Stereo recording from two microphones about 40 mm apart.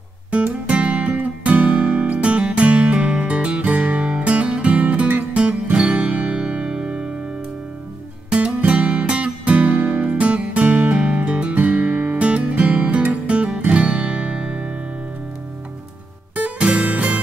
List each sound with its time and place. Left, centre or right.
0.7 s music: right
2.2 s music: right
4.0 s music: right
5.3 s music: right
8.3 s music: right
8.6 s music: right
10.0 s music: right
11.5 s music: right
12.2 s music: right
16.3 s music: right